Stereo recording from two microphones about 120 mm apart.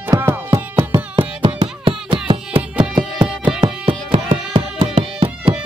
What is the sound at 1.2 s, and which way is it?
Music, 45° right (ahead or behind).